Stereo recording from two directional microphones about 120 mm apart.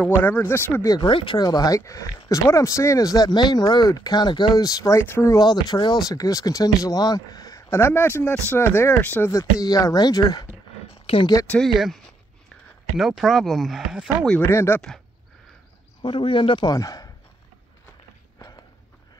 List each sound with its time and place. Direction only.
0.2 s speech: 20° left (ahead or behind)
0.9 s speech: 40° left (ahead or behind); by 5.4 s 20° left (ahead or behind)
5.4 s speech: 35° left (ahead or behind); by 9.3 s 15° left (ahead or behind)
9.3 s speech: 30° left (ahead or behind)
11.1 s speech: 45° left (ahead or behind)
11.6 s speech: centre (ahead or behind)
14.4 s speech: 20° left (ahead or behind)
16.0 s speech: 45° left (ahead or behind)
16.7 s speech: 30° left (ahead or behind)